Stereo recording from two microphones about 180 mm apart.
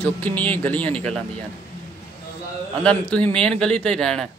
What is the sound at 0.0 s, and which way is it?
A man's voice, 10° left (ahead or behind).